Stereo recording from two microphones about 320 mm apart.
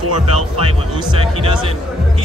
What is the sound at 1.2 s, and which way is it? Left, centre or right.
Speech, centre.